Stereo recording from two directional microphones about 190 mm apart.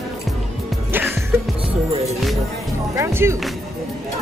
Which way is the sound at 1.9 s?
35° right (ahead or behind).